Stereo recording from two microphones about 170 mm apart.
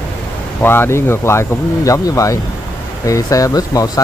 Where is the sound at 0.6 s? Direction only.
15° left (ahead or behind).